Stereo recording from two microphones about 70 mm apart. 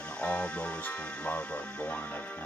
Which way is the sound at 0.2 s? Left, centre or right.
Centre.